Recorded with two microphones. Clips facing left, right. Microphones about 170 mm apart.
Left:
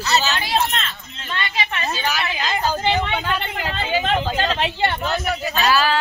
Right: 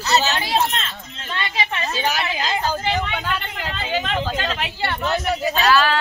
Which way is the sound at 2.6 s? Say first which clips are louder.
Left 5 dB; 15° left (ahead or behind).